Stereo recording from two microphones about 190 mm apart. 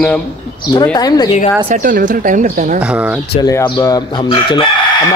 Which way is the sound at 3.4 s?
20° left (ahead or behind).